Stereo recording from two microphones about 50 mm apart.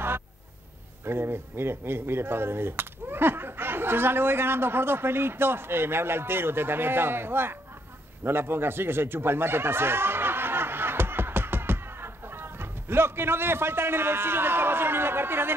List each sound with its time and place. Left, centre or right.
1.0 s speech: right